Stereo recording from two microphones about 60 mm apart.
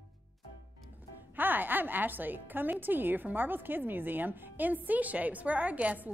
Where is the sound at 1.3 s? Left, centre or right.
Right.